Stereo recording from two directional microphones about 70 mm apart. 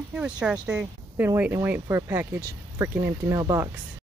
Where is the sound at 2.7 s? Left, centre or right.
Right.